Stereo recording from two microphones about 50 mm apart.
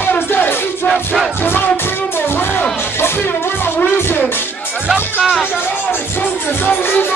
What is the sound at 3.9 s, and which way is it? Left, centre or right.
Music, left.